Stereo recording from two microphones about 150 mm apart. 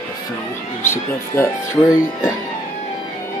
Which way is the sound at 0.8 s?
15° left (ahead or behind).